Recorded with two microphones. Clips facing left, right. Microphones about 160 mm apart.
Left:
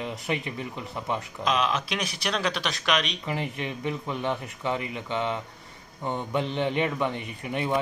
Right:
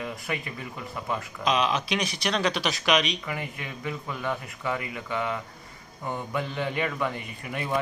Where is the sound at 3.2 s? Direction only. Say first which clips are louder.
Left 4 dB; 25° left (ahead or behind).